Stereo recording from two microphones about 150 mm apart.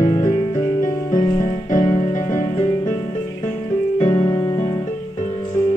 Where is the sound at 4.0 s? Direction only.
20° left (ahead or behind).